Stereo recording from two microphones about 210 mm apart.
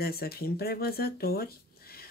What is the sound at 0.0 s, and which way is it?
Speech, 45° left (ahead or behind).